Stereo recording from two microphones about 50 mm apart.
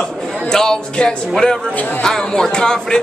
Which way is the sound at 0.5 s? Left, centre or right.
Centre.